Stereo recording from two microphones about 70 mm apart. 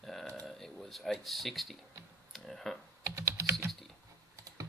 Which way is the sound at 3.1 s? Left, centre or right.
Right.